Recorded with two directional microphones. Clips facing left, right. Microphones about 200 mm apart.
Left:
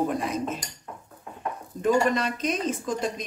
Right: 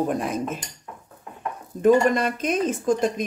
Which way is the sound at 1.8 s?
50° right (ahead or behind).